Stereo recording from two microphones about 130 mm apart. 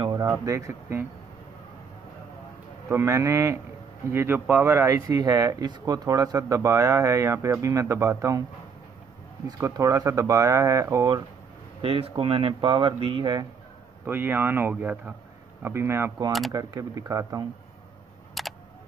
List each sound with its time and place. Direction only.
0.1 s speech: 25° right (ahead or behind)
2.9 s speech: 20° right (ahead or behind)
9.6 s speech: 25° right (ahead or behind)
11.8 s speech: 45° right (ahead or behind)
14.0 s speech: 15° right (ahead or behind)
16.3 s speech: centre (ahead or behind)
16.5 s speech: 25° right (ahead or behind)
18.4 s a sound: centre (ahead or behind)